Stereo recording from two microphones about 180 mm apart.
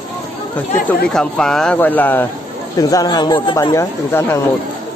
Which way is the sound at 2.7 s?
20° left (ahead or behind).